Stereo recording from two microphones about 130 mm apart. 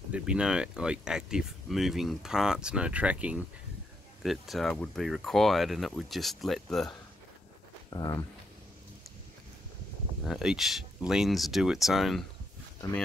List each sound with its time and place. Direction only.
0.1 s speech: 10° right (ahead or behind)
7.9 s speech: 30° left (ahead or behind)
10.2 s speech: centre (ahead or behind)